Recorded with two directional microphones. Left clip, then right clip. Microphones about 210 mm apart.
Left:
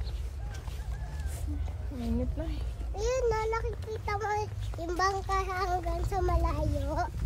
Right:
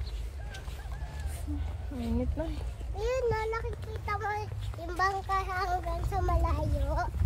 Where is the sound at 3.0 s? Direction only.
10° left (ahead or behind).